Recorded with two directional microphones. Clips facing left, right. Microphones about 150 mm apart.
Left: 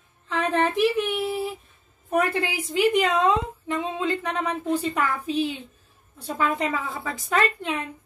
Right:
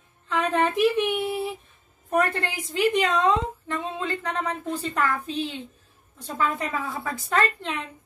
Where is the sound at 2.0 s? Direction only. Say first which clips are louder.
Left 1 dB; 5° left (ahead or behind).